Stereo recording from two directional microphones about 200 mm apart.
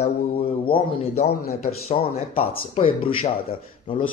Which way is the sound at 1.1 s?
50° left (ahead or behind).